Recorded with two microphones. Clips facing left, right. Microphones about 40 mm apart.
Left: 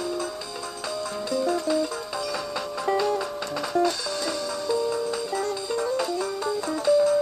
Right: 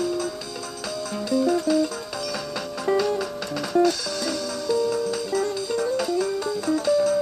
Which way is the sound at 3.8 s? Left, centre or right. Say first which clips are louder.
Right 2 dB; centre.